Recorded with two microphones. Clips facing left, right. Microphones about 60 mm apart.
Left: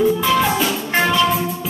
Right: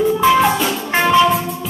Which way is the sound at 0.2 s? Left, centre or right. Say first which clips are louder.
Right 5 dB; centre.